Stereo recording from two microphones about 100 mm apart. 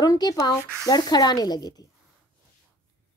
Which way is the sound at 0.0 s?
40° left (ahead or behind).